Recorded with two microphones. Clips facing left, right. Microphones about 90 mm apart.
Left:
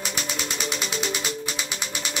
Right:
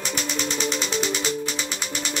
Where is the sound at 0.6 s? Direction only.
5° left (ahead or behind).